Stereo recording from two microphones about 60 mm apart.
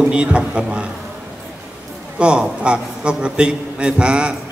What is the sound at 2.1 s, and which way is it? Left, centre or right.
A man's voice, centre.